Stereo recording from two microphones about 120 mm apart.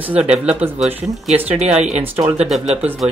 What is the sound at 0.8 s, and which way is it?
Speech, 70° right (ahead or behind).